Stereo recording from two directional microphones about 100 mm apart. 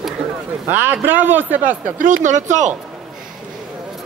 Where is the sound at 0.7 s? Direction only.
20° right (ahead or behind).